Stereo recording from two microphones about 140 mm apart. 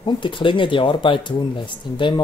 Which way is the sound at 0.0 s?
35° left (ahead or behind).